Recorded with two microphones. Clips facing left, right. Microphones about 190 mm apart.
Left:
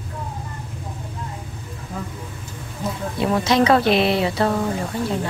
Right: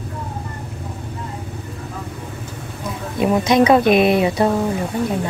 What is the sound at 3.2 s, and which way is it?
Speech, 20° right (ahead or behind).